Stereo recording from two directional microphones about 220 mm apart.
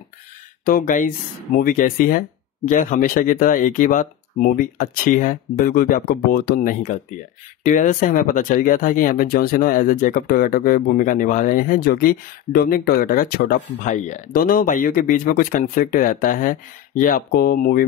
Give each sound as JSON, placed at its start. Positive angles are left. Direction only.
{"t": 0.7, "sound": "speech", "side_deg": 40}